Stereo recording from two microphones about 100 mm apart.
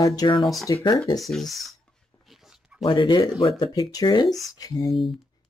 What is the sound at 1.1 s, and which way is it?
Speech, centre (ahead or behind).